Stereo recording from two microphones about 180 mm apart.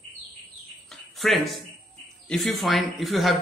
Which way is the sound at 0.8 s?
Centre (ahead or behind).